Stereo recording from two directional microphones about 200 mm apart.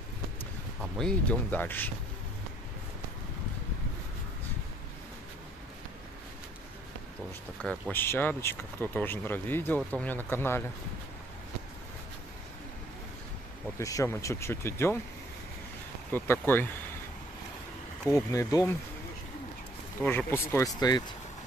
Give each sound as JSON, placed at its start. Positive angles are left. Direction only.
{"t": 0.9, "sound": "speech", "side_deg": 5}
{"t": 7.6, "sound": "speech", "side_deg": 5}
{"t": 13.7, "sound": "speech", "side_deg": 15}
{"t": 16.1, "sound": "speech", "side_deg": 10}
{"t": 18.1, "sound": "speech", "side_deg": 15}
{"t": 20.0, "sound": "speech", "side_deg": 10}